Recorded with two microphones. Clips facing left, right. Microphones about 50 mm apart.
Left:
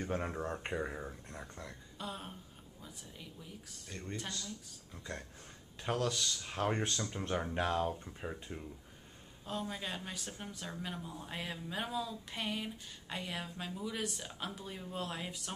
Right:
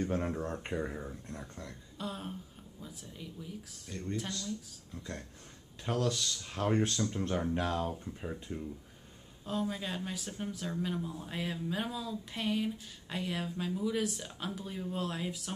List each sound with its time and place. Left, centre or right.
0.0 s speech: centre